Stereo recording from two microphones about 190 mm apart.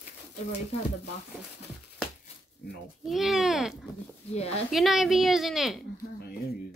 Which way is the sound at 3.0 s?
Centre (ahead or behind).